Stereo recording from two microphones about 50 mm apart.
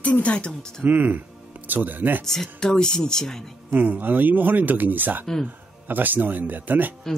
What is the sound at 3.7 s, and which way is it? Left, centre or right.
Speech, right.